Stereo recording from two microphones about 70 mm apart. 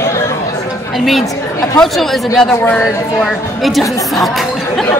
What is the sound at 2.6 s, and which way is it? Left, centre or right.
Speech, centre.